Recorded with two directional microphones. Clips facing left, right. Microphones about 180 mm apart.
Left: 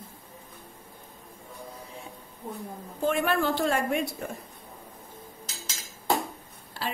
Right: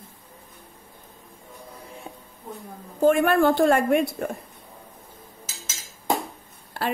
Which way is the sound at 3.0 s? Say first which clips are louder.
Right 8 dB; 50° right (ahead or behind).